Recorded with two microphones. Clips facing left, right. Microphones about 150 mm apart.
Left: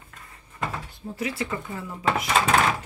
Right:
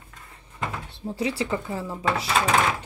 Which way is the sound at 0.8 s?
30° right (ahead or behind).